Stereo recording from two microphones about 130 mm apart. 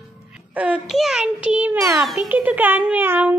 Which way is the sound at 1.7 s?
20° right (ahead or behind).